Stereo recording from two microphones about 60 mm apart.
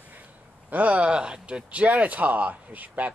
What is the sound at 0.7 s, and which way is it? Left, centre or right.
Speech, right.